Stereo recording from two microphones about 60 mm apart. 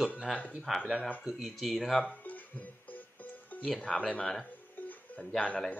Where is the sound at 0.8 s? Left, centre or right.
Centre.